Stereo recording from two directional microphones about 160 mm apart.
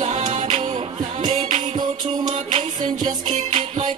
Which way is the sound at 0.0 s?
45° right (ahead or behind).